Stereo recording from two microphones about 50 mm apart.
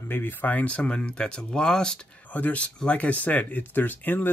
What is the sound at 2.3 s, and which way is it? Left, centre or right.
Speech, left.